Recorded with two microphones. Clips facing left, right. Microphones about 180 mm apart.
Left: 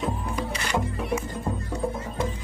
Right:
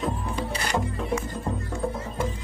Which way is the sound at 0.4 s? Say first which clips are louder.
Right 1 dB; 35° right (ahead or behind).